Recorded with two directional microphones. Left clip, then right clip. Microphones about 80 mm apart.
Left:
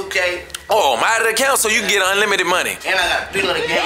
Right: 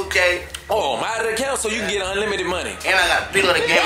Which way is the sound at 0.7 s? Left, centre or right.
Left.